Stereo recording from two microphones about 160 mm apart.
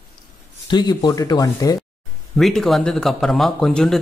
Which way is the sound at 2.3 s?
Centre (ahead or behind).